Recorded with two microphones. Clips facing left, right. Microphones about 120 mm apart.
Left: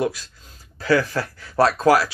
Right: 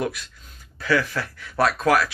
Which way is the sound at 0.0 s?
30° left (ahead or behind).